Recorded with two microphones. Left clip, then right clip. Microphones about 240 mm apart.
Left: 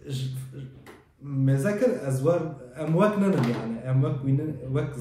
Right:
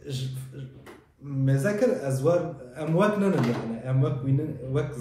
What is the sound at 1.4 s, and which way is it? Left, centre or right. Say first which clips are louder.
A man's voice: even; centre.